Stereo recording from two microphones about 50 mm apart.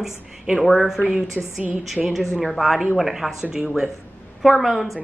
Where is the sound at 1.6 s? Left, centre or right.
Right.